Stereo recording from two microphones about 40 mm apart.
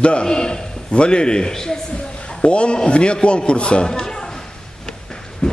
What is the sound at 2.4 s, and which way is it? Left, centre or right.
Speech, left.